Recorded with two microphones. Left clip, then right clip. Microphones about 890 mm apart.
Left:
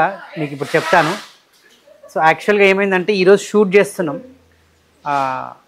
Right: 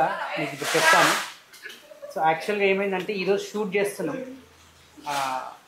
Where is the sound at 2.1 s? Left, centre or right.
Left.